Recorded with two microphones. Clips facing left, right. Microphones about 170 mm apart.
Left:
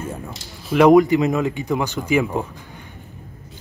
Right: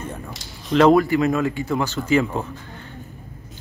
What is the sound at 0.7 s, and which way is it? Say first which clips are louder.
Speech: left 3 dB; 15° left (ahead or behind).